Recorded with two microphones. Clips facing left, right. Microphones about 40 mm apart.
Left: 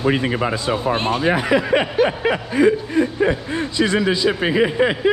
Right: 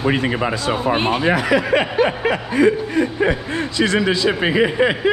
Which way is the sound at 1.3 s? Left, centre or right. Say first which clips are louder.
Right 1 dB; right.